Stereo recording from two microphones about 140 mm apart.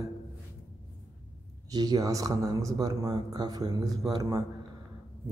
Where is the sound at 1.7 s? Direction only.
30° right (ahead or behind).